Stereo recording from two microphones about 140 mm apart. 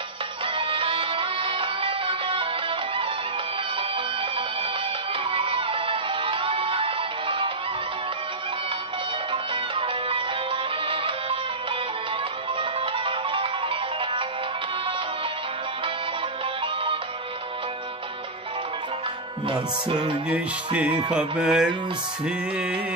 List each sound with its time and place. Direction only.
0.6 s music: 40° right (ahead or behind)
5.3 s music: 40° right (ahead or behind)
9.3 s music: 40° right (ahead or behind)
12.9 s music: 40° right (ahead or behind)
19.4 s music: 35° right (ahead or behind)
20.2 s music: 10° right (ahead or behind)